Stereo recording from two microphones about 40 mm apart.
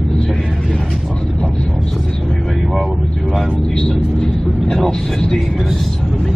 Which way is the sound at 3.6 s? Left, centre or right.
Centre.